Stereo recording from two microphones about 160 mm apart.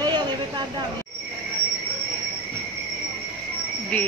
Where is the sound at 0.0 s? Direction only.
25° right (ahead or behind).